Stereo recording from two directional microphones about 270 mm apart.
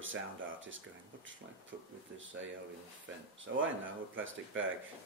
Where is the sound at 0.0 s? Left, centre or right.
Right.